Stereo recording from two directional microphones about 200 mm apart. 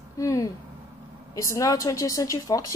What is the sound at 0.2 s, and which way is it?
Speech, 15° left (ahead or behind).